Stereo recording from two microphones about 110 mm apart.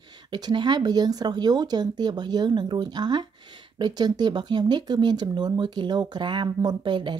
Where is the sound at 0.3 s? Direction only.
40° right (ahead or behind).